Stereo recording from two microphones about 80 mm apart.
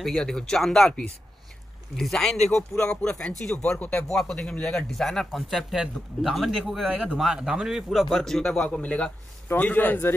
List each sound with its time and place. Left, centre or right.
0.0 s speech: centre
8.2 s a man's voice: centre; by 10.1 s left